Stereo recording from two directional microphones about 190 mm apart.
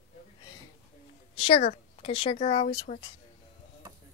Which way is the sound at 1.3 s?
30° left (ahead or behind).